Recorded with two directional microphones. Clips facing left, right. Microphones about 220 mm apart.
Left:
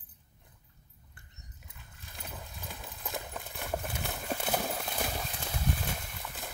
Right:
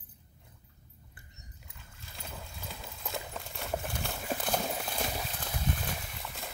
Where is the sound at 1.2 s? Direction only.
Centre (ahead or behind).